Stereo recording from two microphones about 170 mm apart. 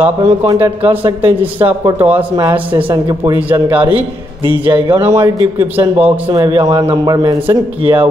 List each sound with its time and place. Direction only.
0.0 s a man's voice: 15° right (ahead or behind)
3.3 s a man's voice: 10° right (ahead or behind)
4.6 s speech: 30° right (ahead or behind)
4.9 s a man's voice: 15° right (ahead or behind)
7.8 s a man's voice: 10° right (ahead or behind)